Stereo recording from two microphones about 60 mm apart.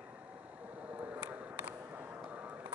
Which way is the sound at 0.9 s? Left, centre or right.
Right.